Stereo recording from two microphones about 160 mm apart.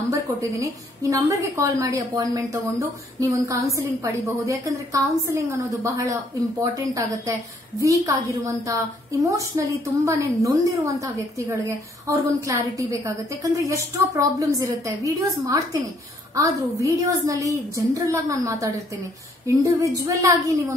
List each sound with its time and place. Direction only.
0.1 s a woman's voice: 20° right (ahead or behind)